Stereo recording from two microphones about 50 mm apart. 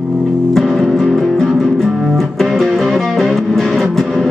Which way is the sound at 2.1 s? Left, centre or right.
Centre.